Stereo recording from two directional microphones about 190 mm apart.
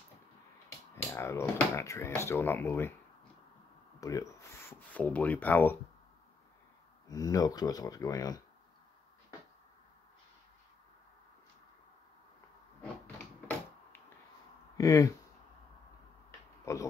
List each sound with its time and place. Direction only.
1.1 s speech: 15° left (ahead or behind)
4.0 s speech: 15° left (ahead or behind)
7.1 s speech: 20° left (ahead or behind)
13.0 s a sound: 10° left (ahead or behind)
14.8 s speech: 15° left (ahead or behind)
16.3 s a sound: 15° left (ahead or behind)